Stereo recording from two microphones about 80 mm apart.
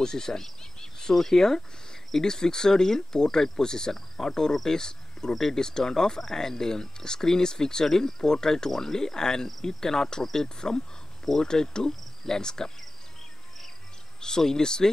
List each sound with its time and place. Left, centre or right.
0.0 s speech: centre
14.2 s speech: centre